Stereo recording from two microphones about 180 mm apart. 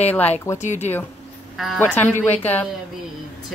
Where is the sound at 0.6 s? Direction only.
40° left (ahead or behind).